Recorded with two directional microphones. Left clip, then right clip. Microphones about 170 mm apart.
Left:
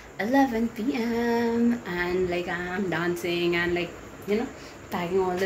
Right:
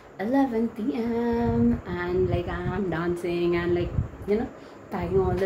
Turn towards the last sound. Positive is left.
turn(degrees=-10)  # may be behind; listen again after turning